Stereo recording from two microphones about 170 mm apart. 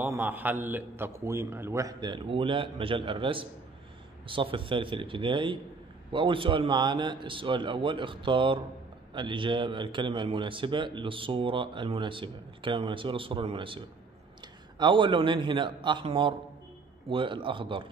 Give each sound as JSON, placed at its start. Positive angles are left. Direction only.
{"t": 0.0, "sound": "a man's voice", "side_deg": -10}